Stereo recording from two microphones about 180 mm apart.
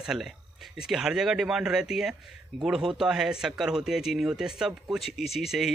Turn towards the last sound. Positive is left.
turn(degrees=0)  # may be behind; listen again after turning